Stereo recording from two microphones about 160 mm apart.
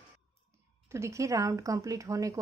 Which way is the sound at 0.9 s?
20° right (ahead or behind).